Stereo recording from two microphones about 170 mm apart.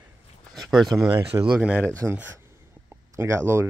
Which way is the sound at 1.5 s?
5° right (ahead or behind).